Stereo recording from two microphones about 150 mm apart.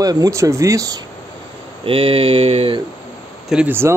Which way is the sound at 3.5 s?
10° right (ahead or behind).